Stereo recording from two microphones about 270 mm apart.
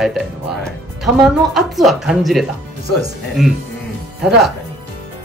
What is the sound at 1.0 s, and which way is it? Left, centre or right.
A woman's voice, centre.